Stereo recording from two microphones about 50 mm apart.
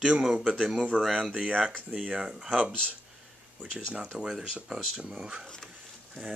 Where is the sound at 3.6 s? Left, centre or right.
Centre.